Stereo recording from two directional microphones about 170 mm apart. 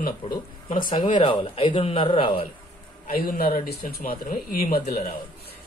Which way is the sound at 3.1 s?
60° left (ahead or behind).